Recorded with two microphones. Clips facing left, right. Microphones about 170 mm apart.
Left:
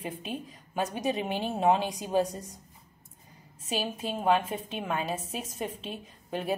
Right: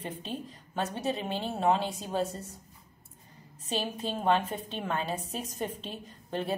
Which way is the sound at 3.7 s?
10° left (ahead or behind).